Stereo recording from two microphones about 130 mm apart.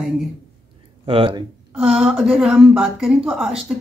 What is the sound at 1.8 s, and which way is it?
A woman's voice, 5° right (ahead or behind).